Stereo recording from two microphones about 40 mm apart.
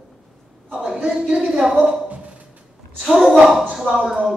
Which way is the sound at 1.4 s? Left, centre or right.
Centre.